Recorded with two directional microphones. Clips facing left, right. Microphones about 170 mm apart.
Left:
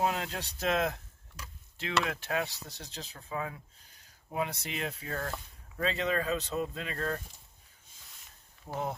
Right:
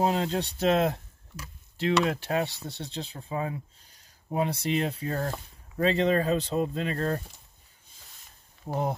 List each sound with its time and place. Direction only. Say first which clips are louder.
0.0 s speech: right 6 dB; 30° right (ahead or behind)
8.6 s speech: right 6 dB; 35° right (ahead or behind)